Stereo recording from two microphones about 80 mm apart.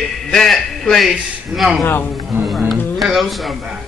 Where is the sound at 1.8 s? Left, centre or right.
Left.